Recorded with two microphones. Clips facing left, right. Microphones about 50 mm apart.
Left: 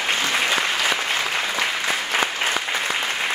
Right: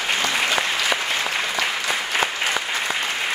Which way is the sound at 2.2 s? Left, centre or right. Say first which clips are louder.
Even; left.